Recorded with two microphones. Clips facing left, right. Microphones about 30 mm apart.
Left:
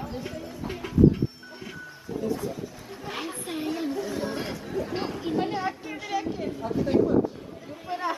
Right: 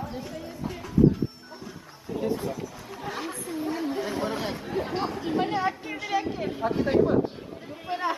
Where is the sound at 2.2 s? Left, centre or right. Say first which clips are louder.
Right 1 dB; right.